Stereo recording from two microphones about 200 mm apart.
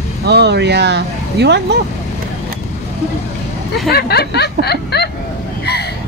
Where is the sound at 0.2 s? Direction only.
55° right (ahead or behind).